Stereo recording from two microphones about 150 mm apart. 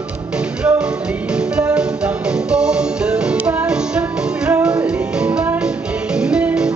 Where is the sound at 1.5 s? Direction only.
5° right (ahead or behind).